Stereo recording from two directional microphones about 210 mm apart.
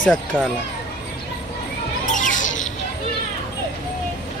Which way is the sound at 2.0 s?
40° left (ahead or behind).